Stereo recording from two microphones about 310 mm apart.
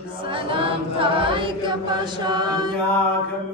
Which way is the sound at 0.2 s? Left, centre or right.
Centre.